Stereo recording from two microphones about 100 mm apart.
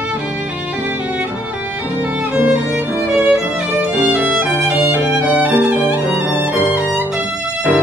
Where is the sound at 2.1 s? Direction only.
15° right (ahead or behind).